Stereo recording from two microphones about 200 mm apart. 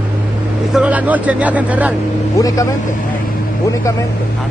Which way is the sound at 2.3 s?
15° left (ahead or behind).